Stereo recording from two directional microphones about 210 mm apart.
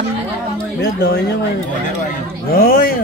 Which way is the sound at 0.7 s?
55° left (ahead or behind).